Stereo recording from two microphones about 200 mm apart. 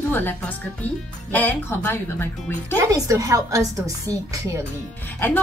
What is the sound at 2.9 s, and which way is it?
A woman's voice, 15° right (ahead or behind).